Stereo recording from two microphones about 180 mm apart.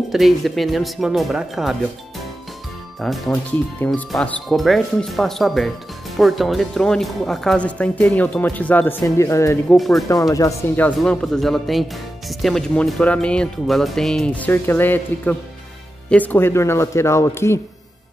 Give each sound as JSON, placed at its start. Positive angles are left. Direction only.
{"t": 0.1, "sound": "speech", "side_deg": 0}
{"t": 3.0, "sound": "speech", "side_deg": 0}
{"t": 9.7, "sound": "speech", "side_deg": 0}
{"t": 10.0, "sound": "speech", "side_deg": 20}
{"t": 11.0, "sound": "speech", "side_deg": 5}